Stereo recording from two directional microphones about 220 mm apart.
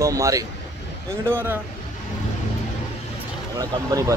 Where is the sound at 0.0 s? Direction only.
15° right (ahead or behind).